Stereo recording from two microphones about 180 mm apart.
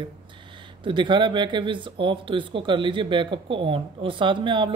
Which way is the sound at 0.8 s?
25° right (ahead or behind).